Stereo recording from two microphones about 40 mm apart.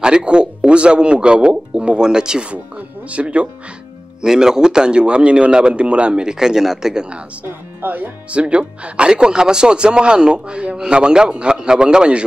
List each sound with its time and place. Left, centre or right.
0.0 s speech: right
3.1 s speech: right
4.2 s speech: centre
7.8 s speech: right
8.3 s speech: right